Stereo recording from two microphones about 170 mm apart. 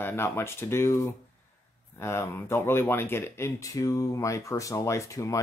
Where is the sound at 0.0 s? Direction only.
15° left (ahead or behind).